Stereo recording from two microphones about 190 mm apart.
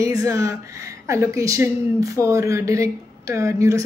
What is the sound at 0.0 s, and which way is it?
Speech, 15° right (ahead or behind).